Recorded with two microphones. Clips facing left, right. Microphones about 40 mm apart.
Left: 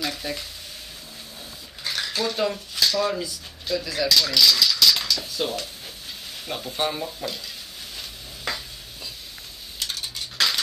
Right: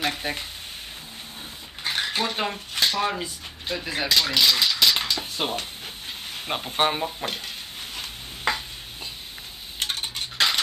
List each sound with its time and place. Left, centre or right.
0.0 s speech: right
1.9 s speech: right
7.2 s a sound: right
9.8 s dishes: right